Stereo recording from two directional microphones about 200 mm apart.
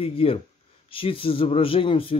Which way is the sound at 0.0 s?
30° left (ahead or behind).